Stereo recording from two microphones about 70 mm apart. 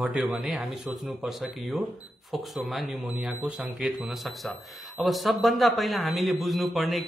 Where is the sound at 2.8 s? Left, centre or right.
Centre.